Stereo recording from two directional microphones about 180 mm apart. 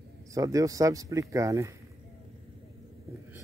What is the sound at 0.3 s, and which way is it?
Speech, 20° right (ahead or behind).